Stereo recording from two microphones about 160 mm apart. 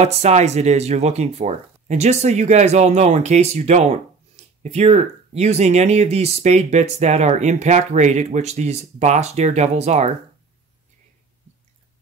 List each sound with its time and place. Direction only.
0.0 s speech: 45° right (ahead or behind)